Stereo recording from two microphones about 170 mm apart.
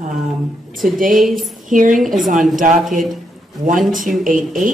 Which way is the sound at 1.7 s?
50° right (ahead or behind).